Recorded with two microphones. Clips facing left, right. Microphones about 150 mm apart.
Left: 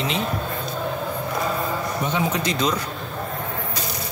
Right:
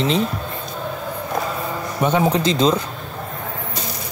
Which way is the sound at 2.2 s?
30° right (ahead or behind).